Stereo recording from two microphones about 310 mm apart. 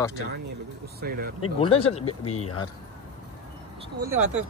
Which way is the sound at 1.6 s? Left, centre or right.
Centre.